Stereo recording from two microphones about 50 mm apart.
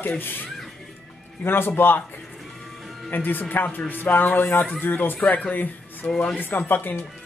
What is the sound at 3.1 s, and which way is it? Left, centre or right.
Speech, left.